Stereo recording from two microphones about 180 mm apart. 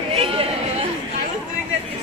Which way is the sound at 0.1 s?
30° right (ahead or behind).